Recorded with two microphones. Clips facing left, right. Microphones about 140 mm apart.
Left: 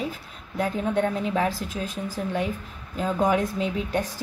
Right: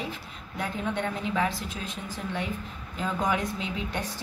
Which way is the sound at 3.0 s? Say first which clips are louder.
Left 5 dB; 40° left (ahead or behind).